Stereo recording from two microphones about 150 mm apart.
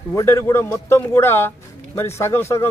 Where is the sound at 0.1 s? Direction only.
20° left (ahead or behind).